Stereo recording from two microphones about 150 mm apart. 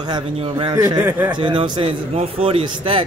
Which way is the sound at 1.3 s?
35° right (ahead or behind).